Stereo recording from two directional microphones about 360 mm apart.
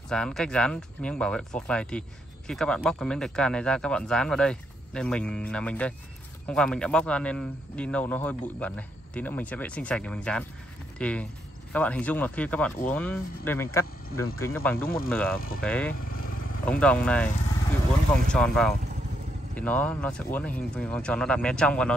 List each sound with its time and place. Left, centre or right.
0.1 s speech: centre
15.3 s speech: left
15.6 s speech: centre
18.3 s speech: centre